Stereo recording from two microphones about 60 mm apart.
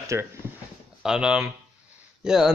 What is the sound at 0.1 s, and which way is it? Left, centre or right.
Speech, right.